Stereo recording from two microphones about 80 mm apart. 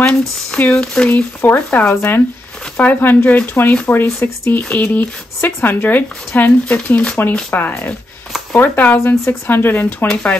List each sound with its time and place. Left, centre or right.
0.6 s speech: centre
8.9 s speech: left